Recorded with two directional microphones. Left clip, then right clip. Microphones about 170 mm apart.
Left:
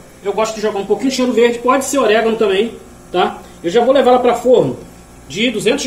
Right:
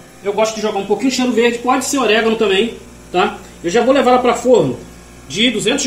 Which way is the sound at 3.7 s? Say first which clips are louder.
Left 1 dB; 10° right (ahead or behind).